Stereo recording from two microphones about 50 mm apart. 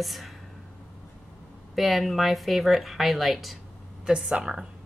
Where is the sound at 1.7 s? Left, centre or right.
Centre.